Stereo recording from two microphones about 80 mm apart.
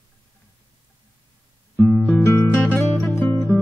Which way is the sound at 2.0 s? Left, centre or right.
Left.